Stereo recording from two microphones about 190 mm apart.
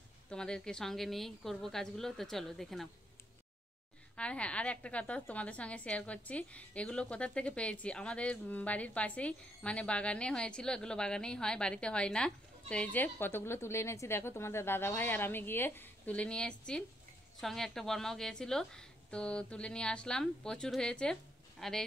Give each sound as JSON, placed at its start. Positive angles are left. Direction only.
{"t": 0.3, "sound": "a woman's voice", "side_deg": 5}
{"t": 4.2, "sound": "a woman's voice", "side_deg": 5}